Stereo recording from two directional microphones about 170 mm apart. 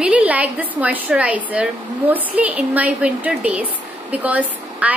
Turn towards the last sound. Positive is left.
turn(degrees=-10)  # may be behind; listen again after turning